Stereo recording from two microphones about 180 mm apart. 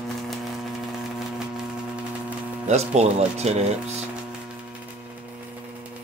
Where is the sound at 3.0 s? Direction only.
35° right (ahead or behind).